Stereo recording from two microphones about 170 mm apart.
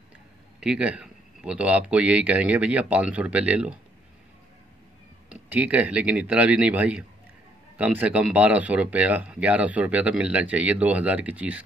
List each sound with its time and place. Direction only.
0.6 s speech: 5° right (ahead or behind)
5.3 s speech: 10° right (ahead or behind)